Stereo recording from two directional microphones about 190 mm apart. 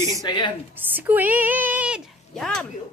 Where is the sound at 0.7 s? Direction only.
10° right (ahead or behind).